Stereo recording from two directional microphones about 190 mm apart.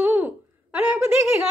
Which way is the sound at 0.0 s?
10° right (ahead or behind).